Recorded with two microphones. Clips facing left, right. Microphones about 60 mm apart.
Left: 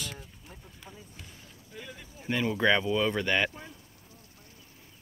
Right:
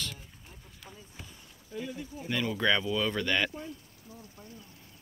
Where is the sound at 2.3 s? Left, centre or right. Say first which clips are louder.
Left 3 dB; centre.